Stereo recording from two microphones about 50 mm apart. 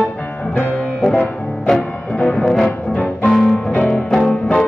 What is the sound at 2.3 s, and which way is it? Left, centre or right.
Music, centre.